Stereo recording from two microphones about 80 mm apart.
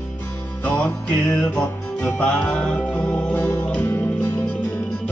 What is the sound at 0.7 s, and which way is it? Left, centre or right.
Music, left.